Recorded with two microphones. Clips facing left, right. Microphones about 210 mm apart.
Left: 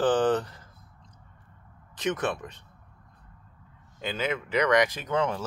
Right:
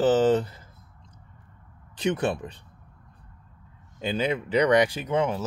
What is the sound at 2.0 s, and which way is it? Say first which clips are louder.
Speech: right 3 dB; 30° right (ahead or behind).